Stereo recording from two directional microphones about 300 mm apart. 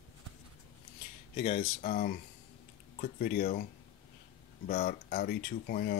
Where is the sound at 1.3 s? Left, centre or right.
Left.